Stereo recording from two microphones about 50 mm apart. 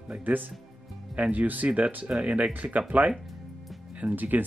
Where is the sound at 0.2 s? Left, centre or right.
Right.